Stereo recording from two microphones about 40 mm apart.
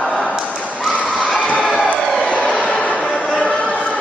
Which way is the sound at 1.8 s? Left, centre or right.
Left.